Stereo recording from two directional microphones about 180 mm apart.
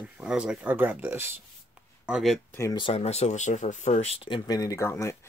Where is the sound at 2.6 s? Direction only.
25° left (ahead or behind).